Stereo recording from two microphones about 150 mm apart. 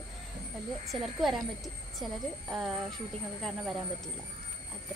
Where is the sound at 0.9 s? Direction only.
Centre (ahead or behind).